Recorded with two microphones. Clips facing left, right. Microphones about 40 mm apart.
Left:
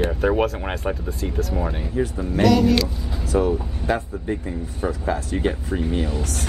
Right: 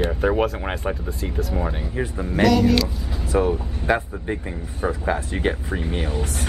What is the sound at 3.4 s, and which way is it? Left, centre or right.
Speech, right.